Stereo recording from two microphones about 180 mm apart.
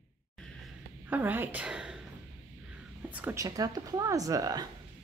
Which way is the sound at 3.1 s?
10° right (ahead or behind).